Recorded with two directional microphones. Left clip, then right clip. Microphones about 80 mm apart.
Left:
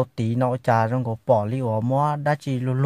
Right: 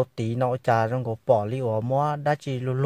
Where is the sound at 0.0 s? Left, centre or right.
Centre.